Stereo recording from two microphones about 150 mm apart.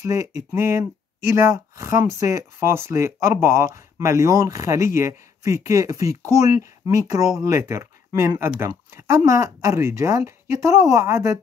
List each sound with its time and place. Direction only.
0.0 s speech: 20° right (ahead or behind)